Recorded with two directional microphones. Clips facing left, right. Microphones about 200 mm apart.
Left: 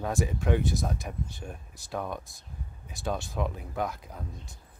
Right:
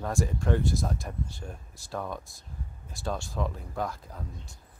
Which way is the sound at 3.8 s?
Centre (ahead or behind).